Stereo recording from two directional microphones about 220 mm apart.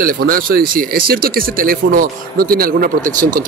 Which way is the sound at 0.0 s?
40° right (ahead or behind).